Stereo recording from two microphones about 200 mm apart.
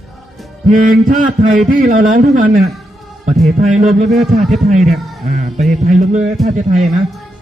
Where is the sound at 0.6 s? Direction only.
45° right (ahead or behind).